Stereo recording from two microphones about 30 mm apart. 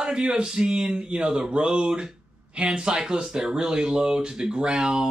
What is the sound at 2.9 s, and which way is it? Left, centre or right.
Speech, centre.